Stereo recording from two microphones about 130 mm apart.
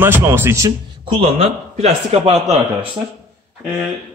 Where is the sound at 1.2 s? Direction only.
55° right (ahead or behind).